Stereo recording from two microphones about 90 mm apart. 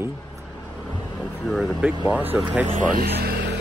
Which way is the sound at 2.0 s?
20° right (ahead or behind).